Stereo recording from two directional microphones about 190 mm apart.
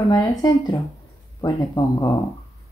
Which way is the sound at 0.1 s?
20° left (ahead or behind).